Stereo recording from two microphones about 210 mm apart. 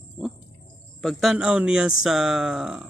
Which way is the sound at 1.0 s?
Centre (ahead or behind).